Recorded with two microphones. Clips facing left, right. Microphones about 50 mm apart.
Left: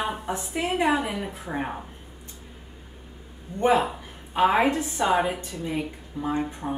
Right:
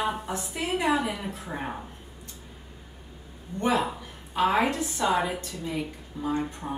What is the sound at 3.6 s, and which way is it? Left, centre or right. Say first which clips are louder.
A woman's voice: left 4 dB; left.